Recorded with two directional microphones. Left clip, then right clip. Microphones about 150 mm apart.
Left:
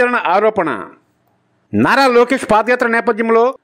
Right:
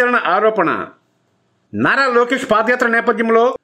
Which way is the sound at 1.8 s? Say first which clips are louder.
Left 3 dB; 40° left (ahead or behind).